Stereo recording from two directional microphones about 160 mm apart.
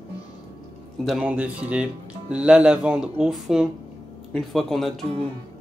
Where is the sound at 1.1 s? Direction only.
5° right (ahead or behind).